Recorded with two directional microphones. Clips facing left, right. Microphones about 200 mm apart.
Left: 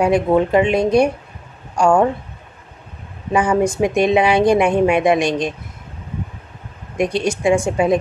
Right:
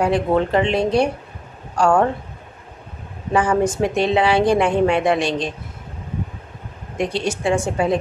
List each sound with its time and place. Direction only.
0.0 s a woman's voice: 15° left (ahead or behind)
3.3 s a woman's voice: 10° left (ahead or behind)
7.0 s a woman's voice: 15° left (ahead or behind)